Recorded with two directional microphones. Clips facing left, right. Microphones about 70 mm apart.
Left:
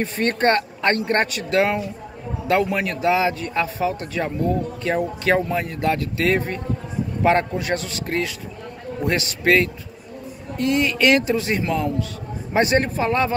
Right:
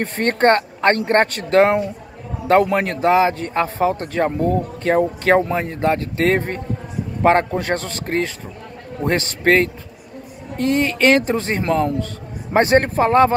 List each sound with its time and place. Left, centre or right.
0.0 s a man's voice: right